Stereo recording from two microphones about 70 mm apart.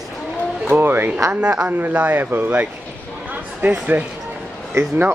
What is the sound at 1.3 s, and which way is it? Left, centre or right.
Speech, centre.